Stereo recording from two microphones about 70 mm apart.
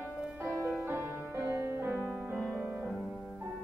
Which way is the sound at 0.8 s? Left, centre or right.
Right.